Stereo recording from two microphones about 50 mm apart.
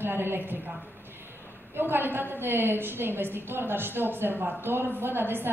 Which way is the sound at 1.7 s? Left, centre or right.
Right.